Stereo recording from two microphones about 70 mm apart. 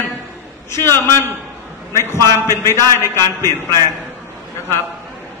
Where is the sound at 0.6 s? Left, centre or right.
Left.